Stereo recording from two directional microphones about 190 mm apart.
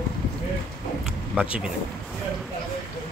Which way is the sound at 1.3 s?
5° right (ahead or behind).